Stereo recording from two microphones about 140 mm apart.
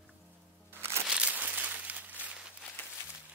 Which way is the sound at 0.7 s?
15° right (ahead or behind).